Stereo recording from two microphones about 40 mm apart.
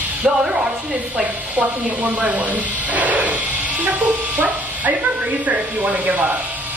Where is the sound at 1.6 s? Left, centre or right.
Right.